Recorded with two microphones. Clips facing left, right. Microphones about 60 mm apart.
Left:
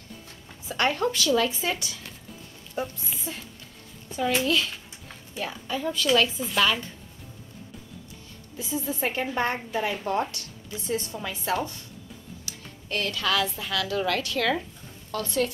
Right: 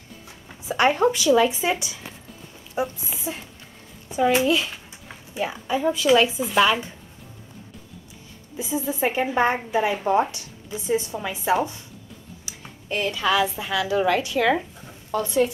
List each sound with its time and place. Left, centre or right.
0.7 s a woman's voice: centre
8.5 s a woman's voice: centre